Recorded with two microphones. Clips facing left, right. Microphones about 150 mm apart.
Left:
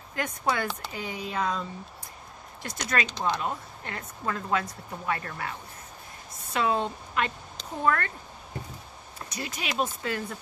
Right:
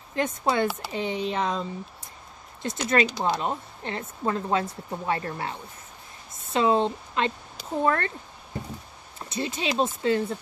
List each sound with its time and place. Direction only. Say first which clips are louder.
0.1 s speech: right 4 dB; 25° right (ahead or behind)
3.1 s speech: right 3 dB; 10° right (ahead or behind)
3.3 s speech: right 3 dB; 25° right (ahead or behind)
9.3 s speech: right 6 dB; 25° right (ahead or behind)